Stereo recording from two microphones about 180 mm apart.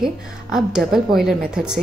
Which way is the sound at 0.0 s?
5° right (ahead or behind).